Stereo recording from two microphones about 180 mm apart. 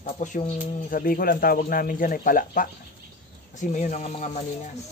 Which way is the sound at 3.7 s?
40° left (ahead or behind).